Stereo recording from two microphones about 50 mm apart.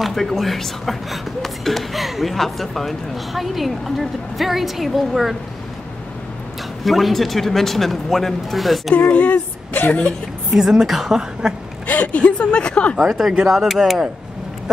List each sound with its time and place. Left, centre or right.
0.0 s speech: centre
6.8 s speech: centre
9.1 s a woman's voice: left
10.5 s speech: centre
11.9 s speech: left
12.9 s speech: centre